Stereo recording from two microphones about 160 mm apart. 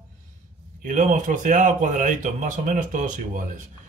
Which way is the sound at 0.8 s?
55° right (ahead or behind).